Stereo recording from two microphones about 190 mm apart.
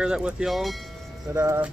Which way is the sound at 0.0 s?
5° right (ahead or behind).